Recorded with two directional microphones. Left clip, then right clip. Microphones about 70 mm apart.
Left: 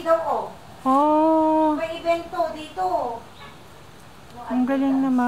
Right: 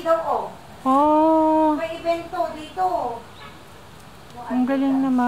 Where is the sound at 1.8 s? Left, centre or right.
Centre.